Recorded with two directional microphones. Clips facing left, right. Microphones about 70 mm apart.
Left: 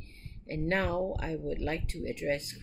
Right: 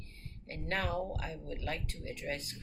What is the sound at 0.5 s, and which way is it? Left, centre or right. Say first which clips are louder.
Speech: left 6 dB; left.